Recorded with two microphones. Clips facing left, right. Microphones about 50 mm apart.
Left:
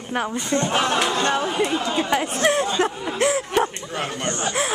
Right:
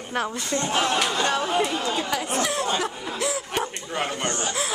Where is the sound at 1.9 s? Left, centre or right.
Left.